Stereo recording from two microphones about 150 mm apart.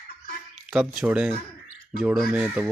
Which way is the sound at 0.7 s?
5° right (ahead or behind).